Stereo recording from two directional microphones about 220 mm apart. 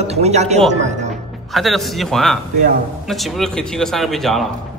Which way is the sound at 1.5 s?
Centre (ahead or behind).